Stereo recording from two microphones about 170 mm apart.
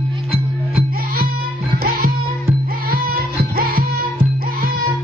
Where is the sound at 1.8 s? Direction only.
60° right (ahead or behind).